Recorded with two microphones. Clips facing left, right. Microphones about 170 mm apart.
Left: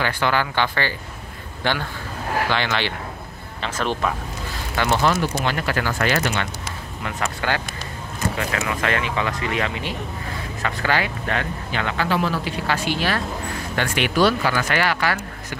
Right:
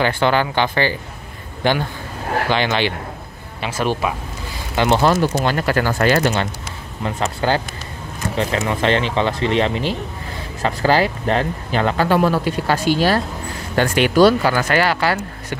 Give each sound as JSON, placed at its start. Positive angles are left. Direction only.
{"t": 0.0, "sound": "a man's voice", "side_deg": -25}
{"t": 4.7, "sound": "speech", "side_deg": -25}
{"t": 12.1, "sound": "speech", "side_deg": -50}